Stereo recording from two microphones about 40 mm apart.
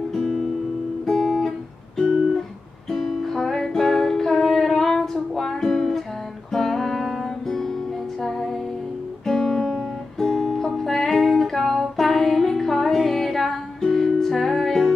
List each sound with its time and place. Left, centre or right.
0.1 s music: centre
1.0 s guitar: centre
2.0 s music: centre